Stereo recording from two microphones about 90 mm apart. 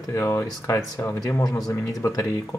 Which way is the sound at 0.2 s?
35° left (ahead or behind).